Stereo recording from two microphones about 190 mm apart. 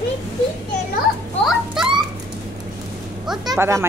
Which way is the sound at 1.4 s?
Centre (ahead or behind).